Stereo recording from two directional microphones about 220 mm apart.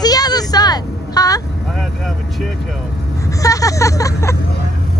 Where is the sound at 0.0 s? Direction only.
15° left (ahead or behind).